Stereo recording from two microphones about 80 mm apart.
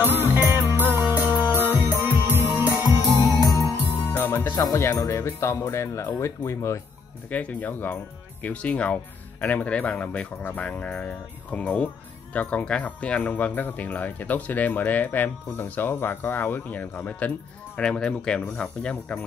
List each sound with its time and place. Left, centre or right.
0.3 s music: right
3.4 s music: left
4.2 s music: left
5.1 s speech: left
7.2 s speech: centre